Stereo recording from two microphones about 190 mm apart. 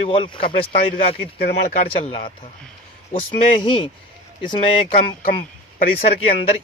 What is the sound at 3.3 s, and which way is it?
Speech, 25° left (ahead or behind).